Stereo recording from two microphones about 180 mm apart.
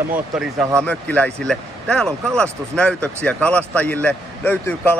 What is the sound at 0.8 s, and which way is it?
Speech, 10° left (ahead or behind).